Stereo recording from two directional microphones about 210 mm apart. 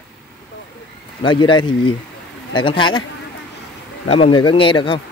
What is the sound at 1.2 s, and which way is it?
Speech, 20° left (ahead or behind).